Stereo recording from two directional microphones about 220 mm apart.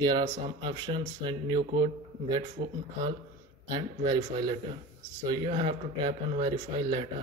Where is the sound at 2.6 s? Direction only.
35° right (ahead or behind).